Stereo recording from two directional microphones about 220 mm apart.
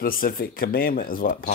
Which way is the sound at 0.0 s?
40° left (ahead or behind).